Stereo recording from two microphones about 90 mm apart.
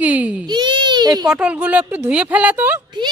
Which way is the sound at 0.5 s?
60° right (ahead or behind).